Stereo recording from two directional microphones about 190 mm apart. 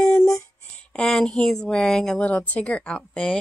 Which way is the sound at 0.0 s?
5° left (ahead or behind).